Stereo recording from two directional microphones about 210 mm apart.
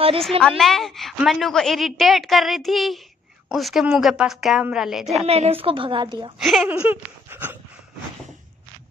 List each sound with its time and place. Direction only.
0.4 s a woman's voice: centre (ahead or behind)
5.2 s a woman's voice: 30° right (ahead or behind)
6.4 s speech: centre (ahead or behind)